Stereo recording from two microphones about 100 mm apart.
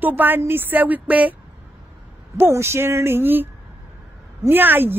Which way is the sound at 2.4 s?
25° right (ahead or behind).